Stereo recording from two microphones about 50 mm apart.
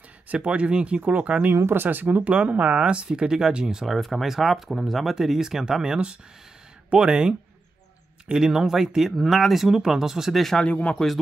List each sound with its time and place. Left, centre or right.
0.3 s speech: right
1.5 s speech: right; by 3.9 s centre
3.9 s speech: centre
10.6 s speech: left